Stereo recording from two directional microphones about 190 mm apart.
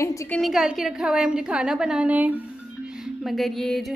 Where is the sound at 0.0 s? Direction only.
15° left (ahead or behind).